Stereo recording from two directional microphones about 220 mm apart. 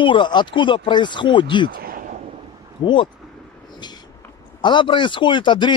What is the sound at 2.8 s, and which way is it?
Speech, 20° left (ahead or behind).